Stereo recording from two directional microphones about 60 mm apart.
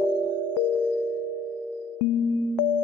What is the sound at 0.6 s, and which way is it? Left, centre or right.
Music, left.